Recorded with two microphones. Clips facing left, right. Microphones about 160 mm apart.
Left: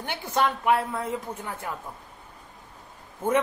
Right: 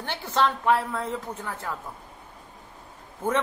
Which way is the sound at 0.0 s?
15° left (ahead or behind).